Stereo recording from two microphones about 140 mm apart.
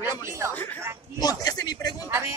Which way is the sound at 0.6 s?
15° left (ahead or behind).